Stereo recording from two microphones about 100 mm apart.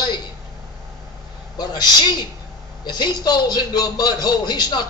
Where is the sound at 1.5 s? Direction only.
45° left (ahead or behind).